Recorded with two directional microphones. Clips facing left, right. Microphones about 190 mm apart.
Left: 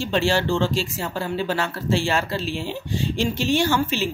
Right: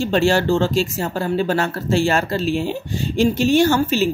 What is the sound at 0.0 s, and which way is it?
A woman's voice, 45° right (ahead or behind).